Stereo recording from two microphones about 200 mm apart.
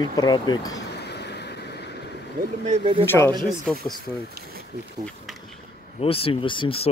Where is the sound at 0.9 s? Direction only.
55° left (ahead or behind).